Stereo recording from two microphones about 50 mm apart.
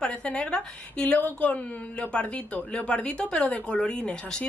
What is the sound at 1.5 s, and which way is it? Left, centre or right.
A woman's voice, left.